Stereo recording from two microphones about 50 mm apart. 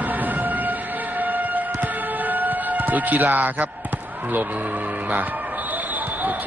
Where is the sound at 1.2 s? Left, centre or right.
Right.